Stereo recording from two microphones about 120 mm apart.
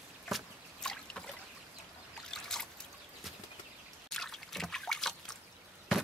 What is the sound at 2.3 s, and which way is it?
Boat, 5° left (ahead or behind).